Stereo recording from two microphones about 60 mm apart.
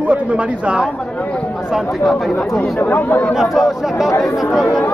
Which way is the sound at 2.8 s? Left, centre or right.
Left.